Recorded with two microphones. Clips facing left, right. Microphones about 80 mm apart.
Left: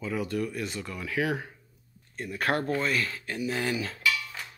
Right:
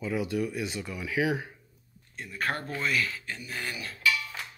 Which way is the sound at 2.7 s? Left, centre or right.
Left.